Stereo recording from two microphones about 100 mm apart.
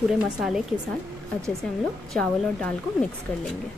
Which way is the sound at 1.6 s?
10° left (ahead or behind).